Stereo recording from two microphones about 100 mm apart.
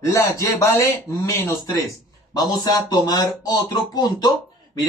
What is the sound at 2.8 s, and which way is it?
Speech, 45° left (ahead or behind).